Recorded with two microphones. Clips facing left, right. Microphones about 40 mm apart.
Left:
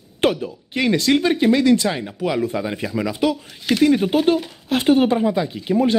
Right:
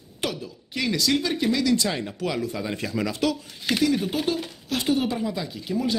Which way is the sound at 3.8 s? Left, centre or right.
Left.